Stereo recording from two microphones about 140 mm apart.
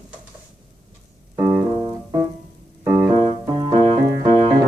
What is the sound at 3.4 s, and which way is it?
Keyboard, 30° right (ahead or behind).